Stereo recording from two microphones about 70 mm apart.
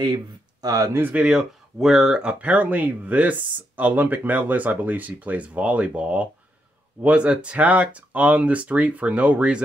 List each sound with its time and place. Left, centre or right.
0.0 s speech: right
1.1 s speech: centre